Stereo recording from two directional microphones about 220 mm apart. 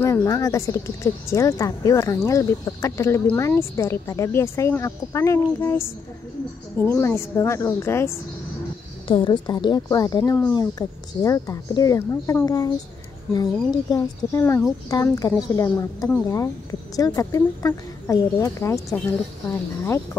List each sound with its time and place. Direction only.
0.0 s speech: 15° left (ahead or behind)
6.9 s speech: 10° left (ahead or behind)